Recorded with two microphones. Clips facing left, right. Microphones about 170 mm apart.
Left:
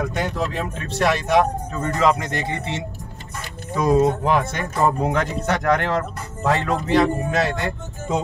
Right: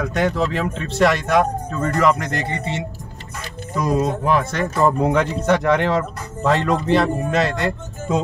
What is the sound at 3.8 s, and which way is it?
Speech, 20° left (ahead or behind).